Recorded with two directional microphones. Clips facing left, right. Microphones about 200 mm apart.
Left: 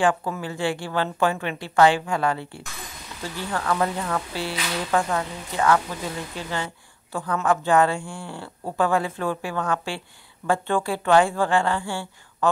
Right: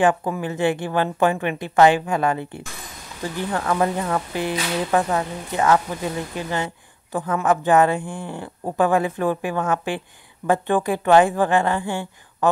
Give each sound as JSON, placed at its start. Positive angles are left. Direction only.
{"t": 0.0, "sound": "a woman's voice", "side_deg": -20}